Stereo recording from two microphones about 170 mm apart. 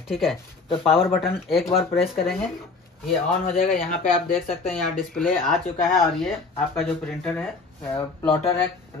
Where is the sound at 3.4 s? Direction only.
50° left (ahead or behind).